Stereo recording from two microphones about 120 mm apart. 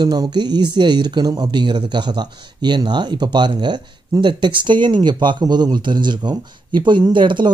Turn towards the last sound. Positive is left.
turn(degrees=-40)  # may be behind; listen again after turning